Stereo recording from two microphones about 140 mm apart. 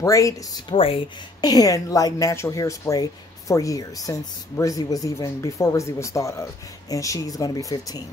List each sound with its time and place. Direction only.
0.0 s speech: 25° left (ahead or behind)
0.7 s speech: 40° left (ahead or behind)
1.4 s speech: 25° left (ahead or behind)